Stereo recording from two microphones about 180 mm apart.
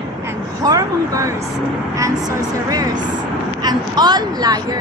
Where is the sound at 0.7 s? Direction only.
20° right (ahead or behind).